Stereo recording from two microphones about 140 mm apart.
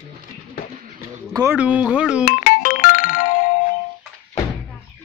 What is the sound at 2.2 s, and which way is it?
Ringtone, 85° left.